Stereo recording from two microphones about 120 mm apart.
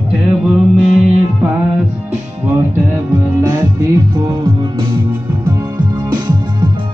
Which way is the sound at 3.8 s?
30° right (ahead or behind).